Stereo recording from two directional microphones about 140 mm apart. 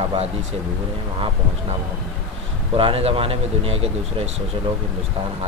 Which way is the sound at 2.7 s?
40° right (ahead or behind).